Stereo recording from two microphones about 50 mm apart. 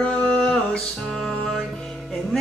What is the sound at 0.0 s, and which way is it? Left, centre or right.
Music, left.